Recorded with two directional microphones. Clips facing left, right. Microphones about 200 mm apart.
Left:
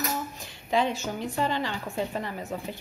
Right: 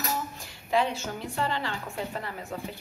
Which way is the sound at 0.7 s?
15° left (ahead or behind).